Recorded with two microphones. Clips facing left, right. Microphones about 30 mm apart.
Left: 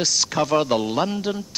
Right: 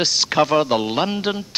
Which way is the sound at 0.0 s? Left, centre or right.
Right.